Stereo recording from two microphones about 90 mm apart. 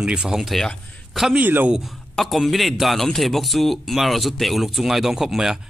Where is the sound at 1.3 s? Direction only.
20° right (ahead or behind).